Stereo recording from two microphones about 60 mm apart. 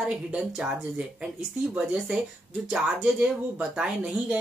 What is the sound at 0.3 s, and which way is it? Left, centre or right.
Speech, centre.